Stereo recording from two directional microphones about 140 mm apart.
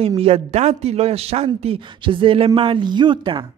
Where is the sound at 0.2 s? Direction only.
50° right (ahead or behind).